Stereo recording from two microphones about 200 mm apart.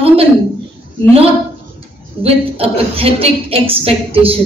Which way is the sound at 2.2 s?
30° right (ahead or behind).